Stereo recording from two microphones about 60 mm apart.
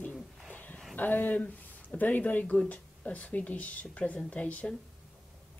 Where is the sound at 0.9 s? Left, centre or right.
Left.